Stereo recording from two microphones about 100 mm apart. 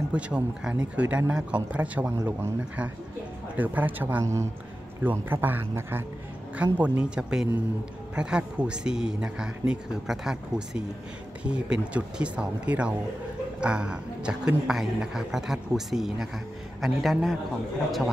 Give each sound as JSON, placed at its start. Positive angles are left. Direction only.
{"t": 0.1, "sound": "a man's voice", "side_deg": -10}
{"t": 4.2, "sound": "a man's voice", "side_deg": -30}